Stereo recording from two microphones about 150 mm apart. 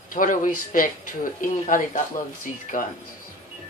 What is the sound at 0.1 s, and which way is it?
Speech, 60° left (ahead or behind).